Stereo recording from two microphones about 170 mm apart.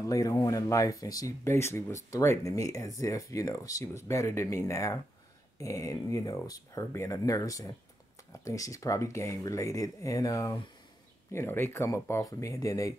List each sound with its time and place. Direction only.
0.0 s speech: 20° left (ahead or behind)